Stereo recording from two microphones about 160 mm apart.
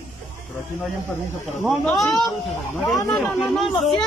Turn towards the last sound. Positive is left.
turn(degrees=0)  # may be behind; listen again after turning